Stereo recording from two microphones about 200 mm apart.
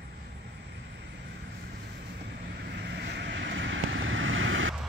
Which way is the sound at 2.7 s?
60° right (ahead or behind).